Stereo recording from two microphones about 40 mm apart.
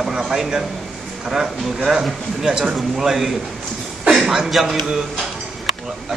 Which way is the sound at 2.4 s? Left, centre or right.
Centre.